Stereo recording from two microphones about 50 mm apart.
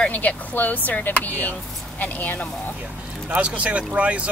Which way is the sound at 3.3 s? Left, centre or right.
Right.